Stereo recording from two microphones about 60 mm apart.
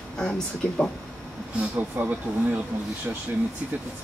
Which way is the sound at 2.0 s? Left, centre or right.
Right.